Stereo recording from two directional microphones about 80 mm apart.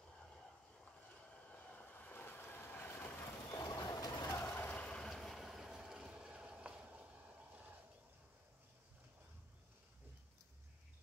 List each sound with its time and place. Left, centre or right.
1.5 s vehicle: centre
3.5 s vehicle: left
4.5 s vehicle: centre; by 7.8 s right